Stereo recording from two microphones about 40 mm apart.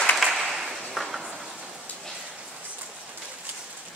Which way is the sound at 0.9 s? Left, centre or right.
Centre.